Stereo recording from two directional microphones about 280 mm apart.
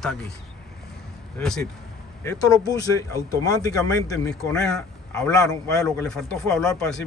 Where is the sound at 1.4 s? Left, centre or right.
Centre.